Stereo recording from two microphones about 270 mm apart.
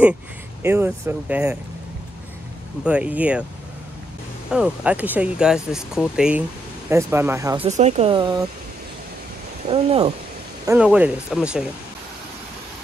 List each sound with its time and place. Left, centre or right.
0.6 s speech: centre
2.8 s speech: centre
4.5 s speech: centre
7.6 s speech: right
9.7 s speech: right
10.6 s speech: centre